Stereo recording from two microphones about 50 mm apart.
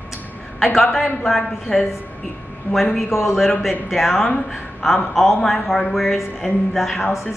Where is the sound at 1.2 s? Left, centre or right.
Centre.